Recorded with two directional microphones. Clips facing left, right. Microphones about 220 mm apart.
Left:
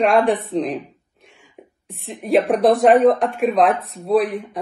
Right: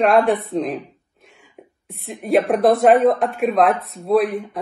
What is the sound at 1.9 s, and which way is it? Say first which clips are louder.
A woman's voice: even; centre (ahead or behind).